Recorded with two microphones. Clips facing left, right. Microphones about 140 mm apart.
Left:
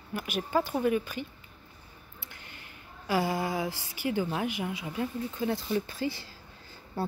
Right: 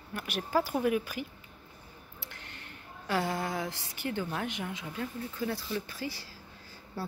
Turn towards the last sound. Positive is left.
turn(degrees=25)  # may be behind; listen again after turning